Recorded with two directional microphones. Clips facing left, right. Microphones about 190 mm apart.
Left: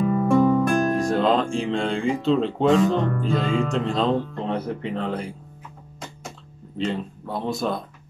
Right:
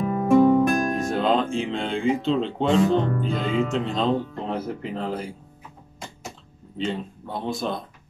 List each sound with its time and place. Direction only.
0.1 s music: 15° right (ahead or behind)
1.1 s speech: centre (ahead or behind)
6.8 s speech: centre (ahead or behind)